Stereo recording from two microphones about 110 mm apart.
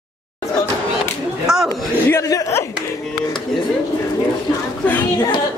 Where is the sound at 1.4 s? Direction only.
5° right (ahead or behind).